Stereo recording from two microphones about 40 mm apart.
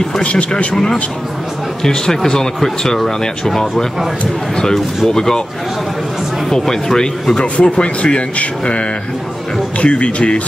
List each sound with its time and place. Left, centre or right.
0.2 s speech: left
1.8 s speech: centre
5.0 s speech: centre
6.5 s speech: centre
7.3 s speech: left